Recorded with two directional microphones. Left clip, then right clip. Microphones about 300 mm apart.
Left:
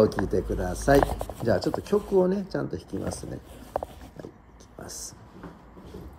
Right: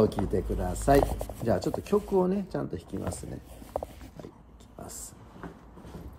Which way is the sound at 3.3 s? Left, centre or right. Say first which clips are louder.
Left 4 dB; centre.